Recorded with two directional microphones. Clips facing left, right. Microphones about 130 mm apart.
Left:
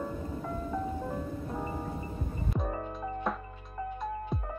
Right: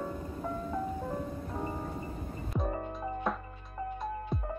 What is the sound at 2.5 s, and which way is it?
Music, centre (ahead or behind).